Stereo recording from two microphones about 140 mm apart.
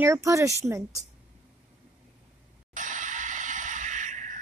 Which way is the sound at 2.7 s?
65° right (ahead or behind).